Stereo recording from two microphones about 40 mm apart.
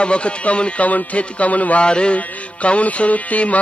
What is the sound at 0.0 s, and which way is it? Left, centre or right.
Speech, left.